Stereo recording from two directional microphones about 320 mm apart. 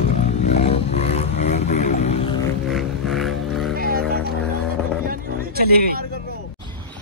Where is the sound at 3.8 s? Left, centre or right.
Right.